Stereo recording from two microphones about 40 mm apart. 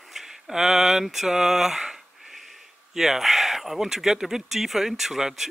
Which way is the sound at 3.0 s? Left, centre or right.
Centre.